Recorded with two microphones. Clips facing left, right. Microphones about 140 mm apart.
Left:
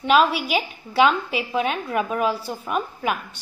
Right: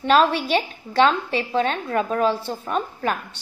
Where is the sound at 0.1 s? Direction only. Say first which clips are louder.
Right 1 dB; 5° left (ahead or behind).